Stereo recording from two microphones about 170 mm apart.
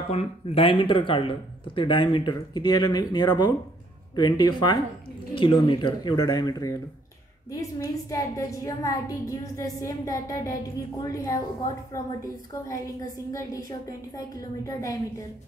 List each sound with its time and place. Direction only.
0.1 s a woman's voice: 35° left (ahead or behind)
7.8 s a woman's voice: 20° left (ahead or behind)
12.6 s a woman's voice: 20° left (ahead or behind)